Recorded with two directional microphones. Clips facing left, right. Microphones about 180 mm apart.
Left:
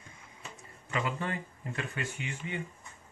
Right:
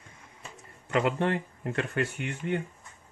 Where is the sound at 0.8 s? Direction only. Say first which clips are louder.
Right 8 dB; 65° right (ahead or behind).